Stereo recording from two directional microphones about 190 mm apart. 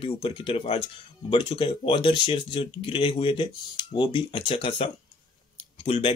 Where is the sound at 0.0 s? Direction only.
30° left (ahead or behind).